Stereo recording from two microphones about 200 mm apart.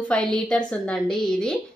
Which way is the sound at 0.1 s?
5° left (ahead or behind).